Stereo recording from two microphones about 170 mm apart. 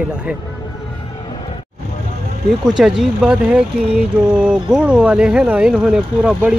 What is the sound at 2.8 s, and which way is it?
Speech, 5° right (ahead or behind).